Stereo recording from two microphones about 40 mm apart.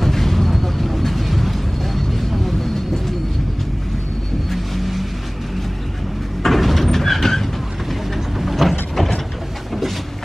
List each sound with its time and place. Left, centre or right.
0.0 s vehicle: centre
4.5 s vehicle: centre
6.4 s vehicle: centre